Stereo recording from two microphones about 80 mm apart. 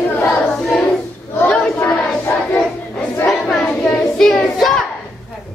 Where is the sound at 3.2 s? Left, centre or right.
Centre.